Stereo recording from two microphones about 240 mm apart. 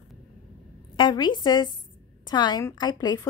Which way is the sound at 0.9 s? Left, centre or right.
Centre.